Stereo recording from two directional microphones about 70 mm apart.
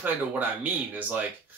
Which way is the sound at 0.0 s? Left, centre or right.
Right.